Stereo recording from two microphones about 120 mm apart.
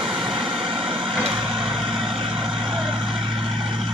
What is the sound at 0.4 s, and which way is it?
Vehicle, 45° right (ahead or behind).